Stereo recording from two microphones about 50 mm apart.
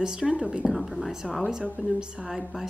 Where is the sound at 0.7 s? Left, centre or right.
Centre.